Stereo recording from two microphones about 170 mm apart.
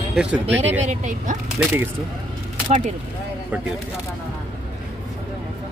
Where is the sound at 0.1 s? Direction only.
5° right (ahead or behind).